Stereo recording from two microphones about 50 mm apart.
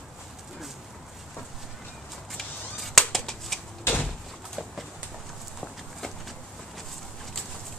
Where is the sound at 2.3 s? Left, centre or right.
Centre.